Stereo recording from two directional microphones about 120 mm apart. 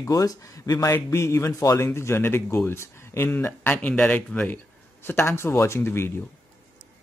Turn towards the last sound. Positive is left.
turn(degrees=20)  # may be behind; listen again after turning